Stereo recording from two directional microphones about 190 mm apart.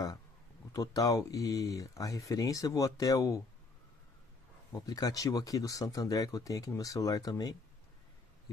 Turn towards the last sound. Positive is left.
turn(degrees=20)  # may be behind; listen again after turning